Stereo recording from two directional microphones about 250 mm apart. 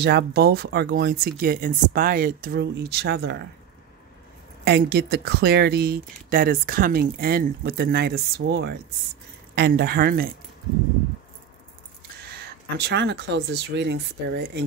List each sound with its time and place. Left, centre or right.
0.0 s speech: right
4.6 s speech: right
12.7 s speech: right